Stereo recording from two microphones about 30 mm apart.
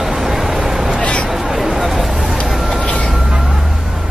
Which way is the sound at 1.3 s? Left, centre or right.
Centre.